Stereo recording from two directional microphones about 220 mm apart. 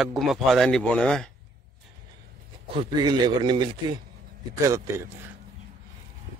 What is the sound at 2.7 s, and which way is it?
A man's voice, 20° right (ahead or behind).